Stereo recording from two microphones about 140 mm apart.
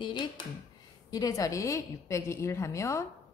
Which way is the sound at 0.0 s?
30° left (ahead or behind).